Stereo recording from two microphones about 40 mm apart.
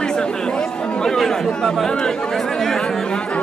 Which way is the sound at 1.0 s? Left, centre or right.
Centre.